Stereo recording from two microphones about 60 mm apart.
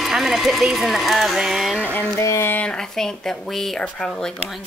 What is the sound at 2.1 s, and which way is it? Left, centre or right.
Speech, left.